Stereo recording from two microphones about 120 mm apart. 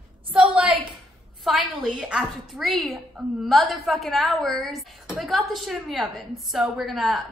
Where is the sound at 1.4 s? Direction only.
Centre (ahead or behind).